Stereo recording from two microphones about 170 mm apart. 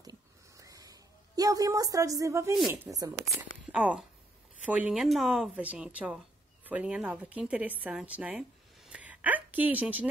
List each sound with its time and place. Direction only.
0.6 s a sound: 20° right (ahead or behind)
2.7 s speech: 15° right (ahead or behind)
3.6 s a woman's voice: 5° right (ahead or behind)